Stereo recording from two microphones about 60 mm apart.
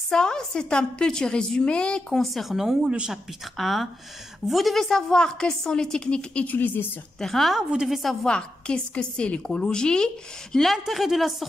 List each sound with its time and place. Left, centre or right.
0.1 s a woman's voice: centre
2.2 s a woman's voice: centre
2.9 s a woman's voice: centre
3.5 s a woman's voice: centre; by 6.9 s left
7.2 s a woman's voice: centre
7.5 s a woman's voice: centre
8.0 s a woman's voice: centre
8.3 s a woman's voice: centre
10.7 s a woman's voice: centre